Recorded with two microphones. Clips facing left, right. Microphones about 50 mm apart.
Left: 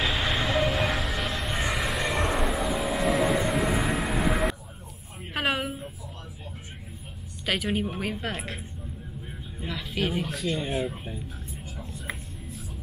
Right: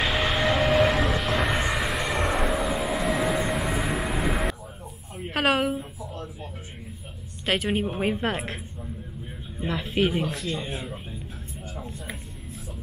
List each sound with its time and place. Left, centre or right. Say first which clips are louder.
0.0 s a sound: right 3 dB; centre
1.3 s vehicle: right 7 dB; right
1.6 s vehicle: right 2 dB; centre
5.3 s a sound: right 5 dB; centre
7.6 s speech: right 3 dB; centre
9.7 s speech: right 5 dB; right
10.5 s speech: left 3 dB; centre